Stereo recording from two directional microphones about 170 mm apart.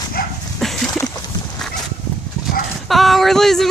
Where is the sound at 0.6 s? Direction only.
Centre (ahead or behind).